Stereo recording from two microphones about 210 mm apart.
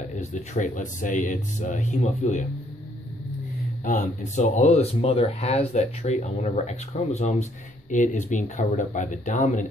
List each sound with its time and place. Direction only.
0.2 s speech: 35° left (ahead or behind)
3.8 s speech: 35° left (ahead or behind)